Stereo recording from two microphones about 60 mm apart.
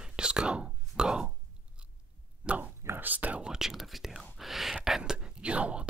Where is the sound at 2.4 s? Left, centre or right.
Right.